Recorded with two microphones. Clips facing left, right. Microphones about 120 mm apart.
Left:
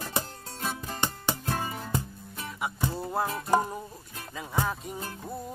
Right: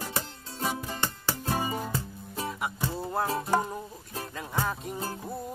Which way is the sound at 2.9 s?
Centre (ahead or behind).